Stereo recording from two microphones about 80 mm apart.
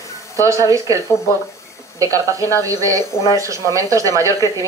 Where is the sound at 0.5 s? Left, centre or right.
Right.